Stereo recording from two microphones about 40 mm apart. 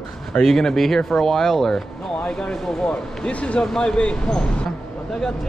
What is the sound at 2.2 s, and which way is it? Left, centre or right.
Speech, left.